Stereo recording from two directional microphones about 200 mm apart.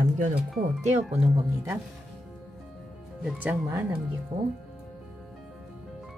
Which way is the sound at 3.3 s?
10° right (ahead or behind).